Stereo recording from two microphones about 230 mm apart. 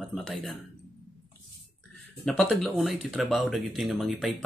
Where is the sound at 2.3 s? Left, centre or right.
Centre.